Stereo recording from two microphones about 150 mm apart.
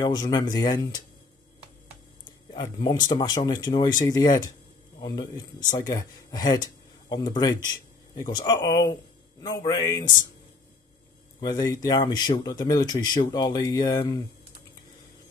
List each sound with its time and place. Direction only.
0.0 s speech: 25° left (ahead or behind)
2.5 s speech: 30° left (ahead or behind)
11.4 s speech: 25° left (ahead or behind)